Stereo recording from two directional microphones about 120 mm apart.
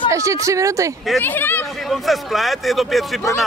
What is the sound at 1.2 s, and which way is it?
Speech, 15° left (ahead or behind).